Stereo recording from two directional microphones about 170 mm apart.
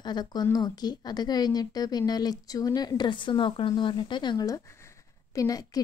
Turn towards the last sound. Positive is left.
turn(degrees=20)  # may be behind; listen again after turning